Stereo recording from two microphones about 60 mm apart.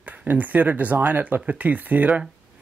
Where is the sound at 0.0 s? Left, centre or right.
Right.